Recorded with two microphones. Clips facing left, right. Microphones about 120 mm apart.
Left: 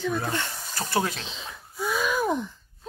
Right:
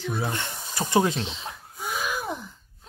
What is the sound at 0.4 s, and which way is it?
Speech, 15° right (ahead or behind).